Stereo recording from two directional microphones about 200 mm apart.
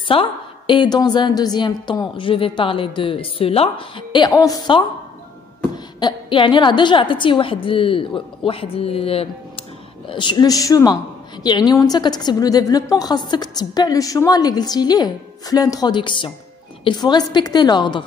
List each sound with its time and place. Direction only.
0.1 s a woman's voice: 25° left (ahead or behind)
5.9 s a woman's voice: 25° left (ahead or behind)